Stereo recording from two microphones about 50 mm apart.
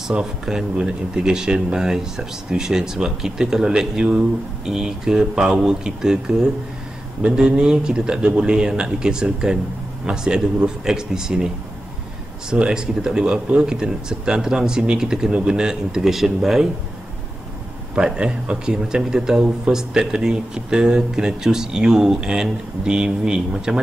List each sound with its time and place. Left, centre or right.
0.1 s speech: centre
12.4 s speech: centre
17.9 s speech: centre